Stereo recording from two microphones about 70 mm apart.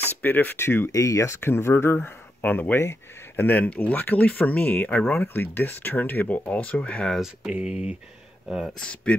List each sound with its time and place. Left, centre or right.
0.2 s speech: left
0.9 s speech: left
1.4 s speech: left
2.4 s speech: left
7.4 s speech: centre
8.7 s speech: centre